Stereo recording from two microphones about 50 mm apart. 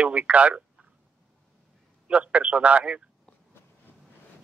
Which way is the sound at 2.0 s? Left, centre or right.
Right.